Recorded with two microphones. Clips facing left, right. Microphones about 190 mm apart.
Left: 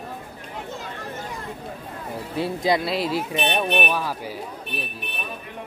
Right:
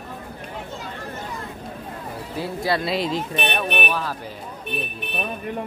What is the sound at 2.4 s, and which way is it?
Speech, 20° left (ahead or behind).